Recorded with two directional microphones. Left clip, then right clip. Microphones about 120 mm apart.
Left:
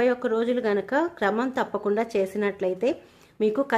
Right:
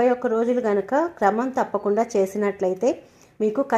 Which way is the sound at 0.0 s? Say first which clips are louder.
Right 3 dB; centre (ahead or behind).